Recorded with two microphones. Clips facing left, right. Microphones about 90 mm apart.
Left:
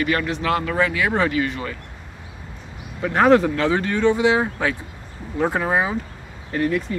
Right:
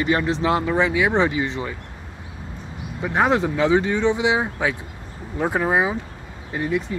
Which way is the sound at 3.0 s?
15° right (ahead or behind).